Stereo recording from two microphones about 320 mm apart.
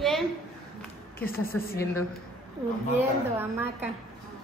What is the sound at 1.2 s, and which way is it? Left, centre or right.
Speech, left.